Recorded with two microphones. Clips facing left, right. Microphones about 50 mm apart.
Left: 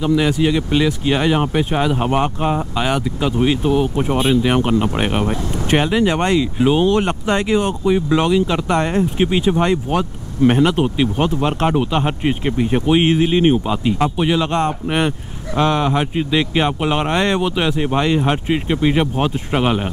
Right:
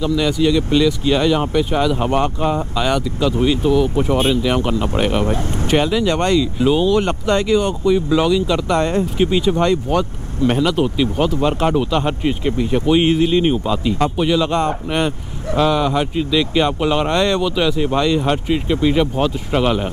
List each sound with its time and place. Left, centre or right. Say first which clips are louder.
0.0 s speech: left 1 dB; left
3.9 s speech: right 1 dB; centre
4.4 s speech: left 2 dB; left
11.3 s speech: right 1 dB; centre
14.5 s speech: even; centre